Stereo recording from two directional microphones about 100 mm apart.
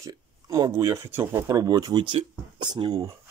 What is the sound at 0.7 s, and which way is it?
Speech, 30° right (ahead or behind).